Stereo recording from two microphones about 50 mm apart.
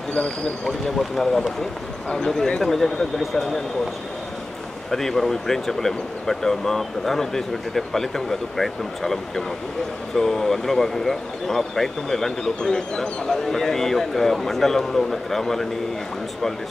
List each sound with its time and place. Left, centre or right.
0.7 s speech: centre
4.9 s speech: centre